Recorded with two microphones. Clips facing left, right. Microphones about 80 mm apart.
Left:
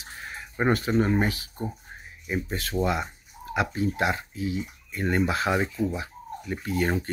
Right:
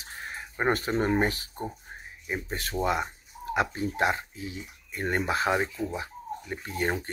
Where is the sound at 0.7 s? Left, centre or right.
Right.